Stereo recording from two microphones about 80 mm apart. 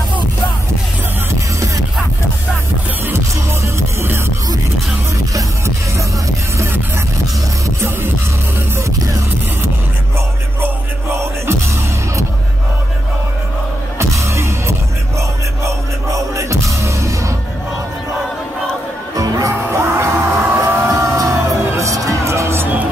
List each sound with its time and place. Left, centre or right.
3.6 s music: right
7.6 s music: right
10.6 s music: right
13.9 s music: right
19.1 s music: right
19.6 s music: right
20.5 s vehicle: right
20.9 s music: right